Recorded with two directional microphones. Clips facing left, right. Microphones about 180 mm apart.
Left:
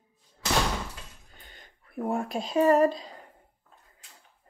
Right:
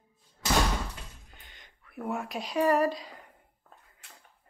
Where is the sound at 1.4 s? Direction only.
35° left (ahead or behind).